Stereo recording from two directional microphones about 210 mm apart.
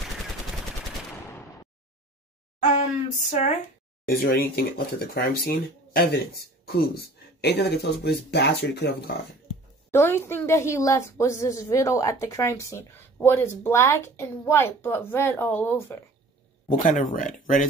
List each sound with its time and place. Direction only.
2.6 s speech: 35° left (ahead or behind)
4.1 s speech: 45° left (ahead or behind)
9.8 s a woman's voice: 10° left (ahead or behind)
16.8 s speech: 40° left (ahead or behind)